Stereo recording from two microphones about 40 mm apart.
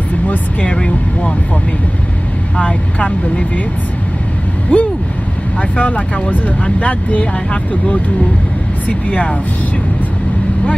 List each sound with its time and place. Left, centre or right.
0.3 s speech: left
2.5 s speech: left
4.7 s speech: left
8.8 s speech: left